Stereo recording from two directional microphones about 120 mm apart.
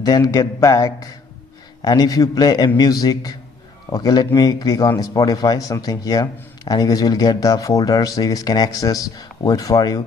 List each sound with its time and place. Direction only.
0.0 s a man's voice: 30° left (ahead or behind)